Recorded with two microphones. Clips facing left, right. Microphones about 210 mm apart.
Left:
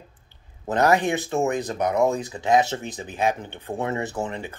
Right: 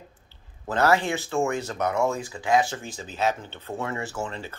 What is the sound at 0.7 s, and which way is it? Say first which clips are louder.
Speech: left 2 dB; 15° left (ahead or behind).